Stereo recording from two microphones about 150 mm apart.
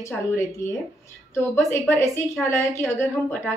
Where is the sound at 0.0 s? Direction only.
20° left (ahead or behind).